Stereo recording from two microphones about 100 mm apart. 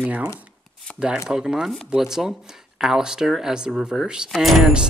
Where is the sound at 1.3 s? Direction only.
5° right (ahead or behind).